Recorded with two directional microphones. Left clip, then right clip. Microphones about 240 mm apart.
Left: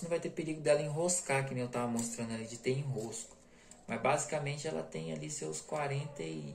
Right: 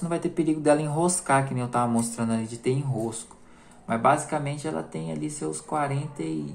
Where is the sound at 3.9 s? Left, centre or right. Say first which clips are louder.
Right 10 dB; right.